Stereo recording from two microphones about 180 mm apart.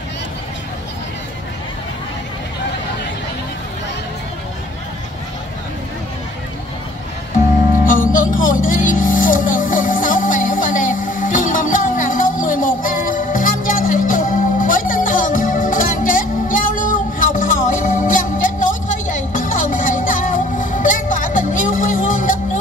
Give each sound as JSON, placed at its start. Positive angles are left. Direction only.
{"t": 7.8, "sound": "music", "side_deg": 50}